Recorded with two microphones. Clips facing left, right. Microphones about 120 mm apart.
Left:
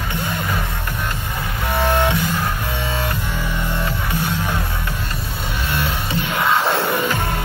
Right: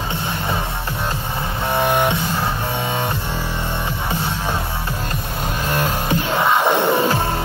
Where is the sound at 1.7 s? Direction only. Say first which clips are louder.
Even; 20° right (ahead or behind).